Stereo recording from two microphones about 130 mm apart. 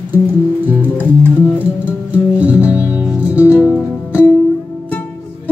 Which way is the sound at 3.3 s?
20° left (ahead or behind).